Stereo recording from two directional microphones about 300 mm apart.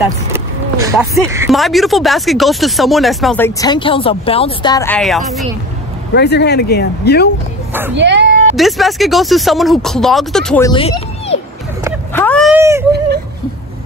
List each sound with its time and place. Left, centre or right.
0.3 s speech: centre
6.1 s speech: left
7.9 s speech: right
8.5 s speech: centre
10.7 s speech: centre
12.1 s a sound: centre